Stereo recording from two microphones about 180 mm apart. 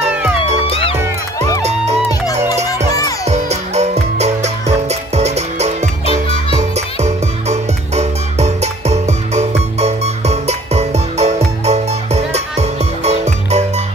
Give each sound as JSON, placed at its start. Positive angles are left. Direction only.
{"t": 0.7, "sound": "music", "side_deg": 30}
{"t": 1.6, "sound": "music", "side_deg": -35}
{"t": 3.3, "sound": "music", "side_deg": -40}